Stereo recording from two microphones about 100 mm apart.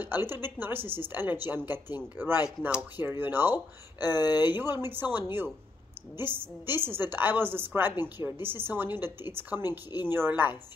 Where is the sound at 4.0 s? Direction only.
40° left (ahead or behind).